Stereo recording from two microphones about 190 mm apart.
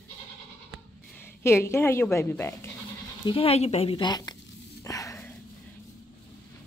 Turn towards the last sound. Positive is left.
turn(degrees=15)  # may be behind; listen again after turning